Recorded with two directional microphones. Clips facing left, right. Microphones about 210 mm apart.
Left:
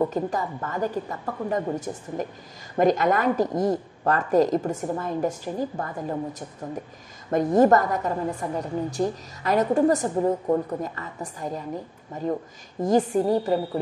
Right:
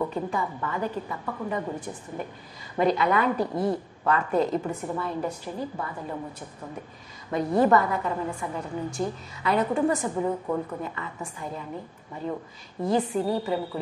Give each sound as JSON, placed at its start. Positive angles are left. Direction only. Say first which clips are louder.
{"t": 0.0, "sound": "a woman's voice", "louder": "left 3 dB", "side_deg": 40}
{"t": 7.2, "sound": "a woman's voice", "louder": "left 4 dB", "side_deg": 45}
{"t": 12.8, "sound": "a woman's voice", "louder": "left 4 dB", "side_deg": 45}